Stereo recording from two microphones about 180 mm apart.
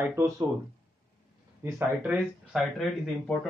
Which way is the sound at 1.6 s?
10° right (ahead or behind).